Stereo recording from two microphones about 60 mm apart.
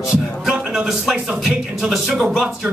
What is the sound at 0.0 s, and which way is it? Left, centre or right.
Music, centre.